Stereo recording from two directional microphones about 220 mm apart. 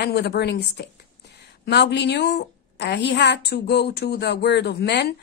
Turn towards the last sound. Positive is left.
turn(degrees=50)  # may be behind; listen again after turning